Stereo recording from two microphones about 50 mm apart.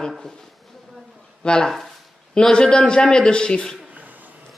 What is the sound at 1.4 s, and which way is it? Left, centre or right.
A man's voice, centre.